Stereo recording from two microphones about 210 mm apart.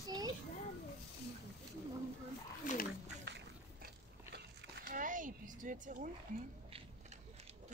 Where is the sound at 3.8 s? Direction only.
50° right (ahead or behind).